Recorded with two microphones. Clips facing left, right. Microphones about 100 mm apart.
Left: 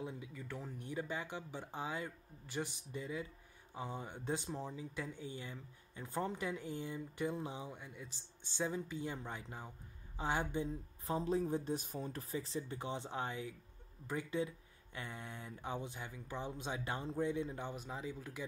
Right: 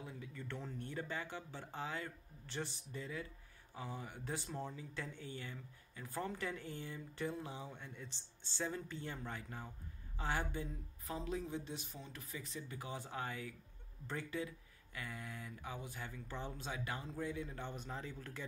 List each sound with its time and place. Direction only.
0.0 s speech: 20° left (ahead or behind)
11.1 s speech: 35° left (ahead or behind)
17.6 s speech: 10° left (ahead or behind)